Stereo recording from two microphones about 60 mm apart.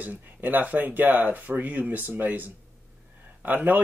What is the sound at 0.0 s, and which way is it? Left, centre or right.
Speech, right.